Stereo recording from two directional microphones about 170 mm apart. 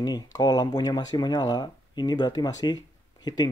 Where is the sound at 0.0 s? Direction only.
25° left (ahead or behind).